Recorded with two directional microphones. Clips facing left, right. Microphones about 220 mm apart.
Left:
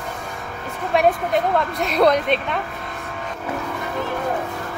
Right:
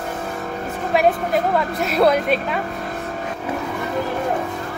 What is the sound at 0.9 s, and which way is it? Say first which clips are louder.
A woman's voice: even; centre (ahead or behind).